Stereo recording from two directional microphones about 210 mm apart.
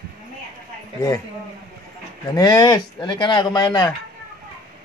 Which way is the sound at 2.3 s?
20° left (ahead or behind).